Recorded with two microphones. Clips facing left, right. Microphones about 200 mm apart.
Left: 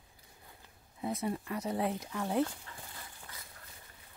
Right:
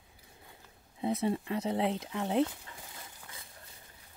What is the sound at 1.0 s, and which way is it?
Speech, 25° right (ahead or behind).